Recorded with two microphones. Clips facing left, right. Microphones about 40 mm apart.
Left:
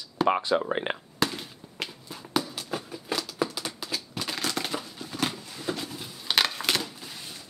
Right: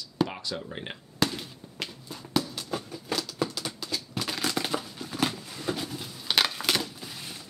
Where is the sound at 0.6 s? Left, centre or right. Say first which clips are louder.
Left 9 dB; left.